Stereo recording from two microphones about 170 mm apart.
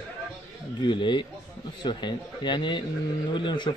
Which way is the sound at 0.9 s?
30° left (ahead or behind).